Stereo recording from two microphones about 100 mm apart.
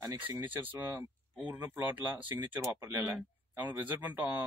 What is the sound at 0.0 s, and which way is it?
Speech, 35° right (ahead or behind).